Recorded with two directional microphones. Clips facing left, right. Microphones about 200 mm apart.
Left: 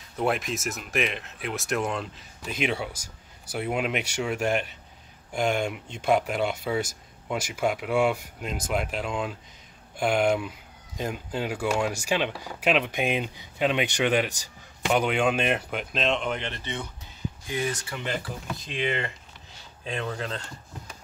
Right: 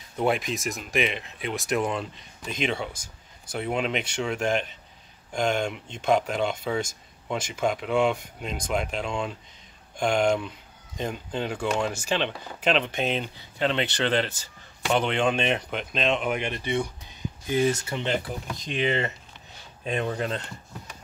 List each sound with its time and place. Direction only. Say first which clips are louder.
0.2 s speech: right 1 dB; centre (ahead or behind)
17.5 s speech: right 7 dB; 25° right (ahead or behind)
19.8 s speech: right 4 dB; 35° right (ahead or behind)